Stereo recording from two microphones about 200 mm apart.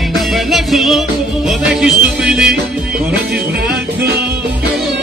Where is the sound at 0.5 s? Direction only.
Centre (ahead or behind).